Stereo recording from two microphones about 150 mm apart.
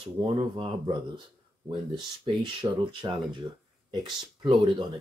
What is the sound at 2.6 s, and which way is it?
Speech, 35° right (ahead or behind).